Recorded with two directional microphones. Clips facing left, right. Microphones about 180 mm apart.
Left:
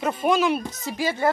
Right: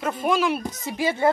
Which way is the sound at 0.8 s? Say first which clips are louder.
Right 2 dB; 20° right (ahead or behind).